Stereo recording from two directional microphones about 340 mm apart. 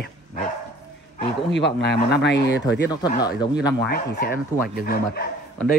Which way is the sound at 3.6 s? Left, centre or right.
Left.